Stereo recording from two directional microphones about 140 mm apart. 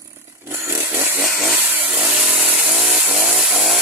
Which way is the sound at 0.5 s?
20° right (ahead or behind).